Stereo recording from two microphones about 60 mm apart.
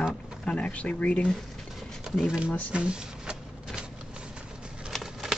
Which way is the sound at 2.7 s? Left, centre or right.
Centre.